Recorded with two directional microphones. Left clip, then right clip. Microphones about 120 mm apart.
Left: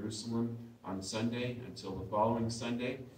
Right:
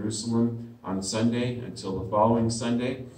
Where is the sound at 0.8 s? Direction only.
15° left (ahead or behind).